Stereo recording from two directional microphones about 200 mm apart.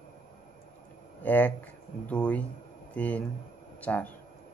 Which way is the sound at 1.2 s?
10° left (ahead or behind).